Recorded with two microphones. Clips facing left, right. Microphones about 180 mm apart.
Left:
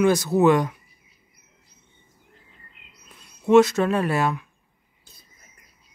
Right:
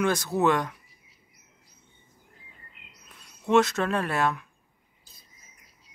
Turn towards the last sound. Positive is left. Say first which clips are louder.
# left 4 dB
turn(degrees=5)  # may be behind; listen again after turning